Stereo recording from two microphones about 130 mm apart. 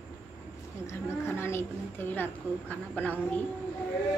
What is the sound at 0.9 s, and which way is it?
A woman's voice, 20° left (ahead or behind).